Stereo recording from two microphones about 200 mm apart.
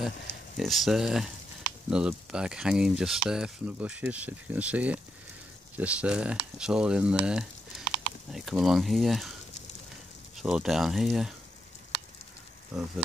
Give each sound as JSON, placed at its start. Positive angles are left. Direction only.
{"t": 0.6, "sound": "speech", "side_deg": 0}
{"t": 10.3, "sound": "speech", "side_deg": -5}
{"t": 12.7, "sound": "speech", "side_deg": -5}